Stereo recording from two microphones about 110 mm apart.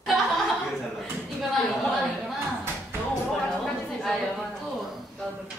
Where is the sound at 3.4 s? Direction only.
Centre (ahead or behind).